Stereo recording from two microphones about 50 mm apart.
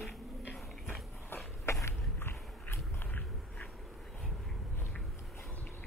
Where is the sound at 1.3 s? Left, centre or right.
Left.